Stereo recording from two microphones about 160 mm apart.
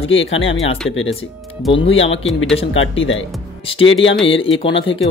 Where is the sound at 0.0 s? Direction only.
35° left (ahead or behind).